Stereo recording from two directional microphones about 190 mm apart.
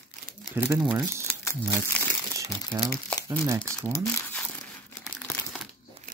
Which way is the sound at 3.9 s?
15° left (ahead or behind).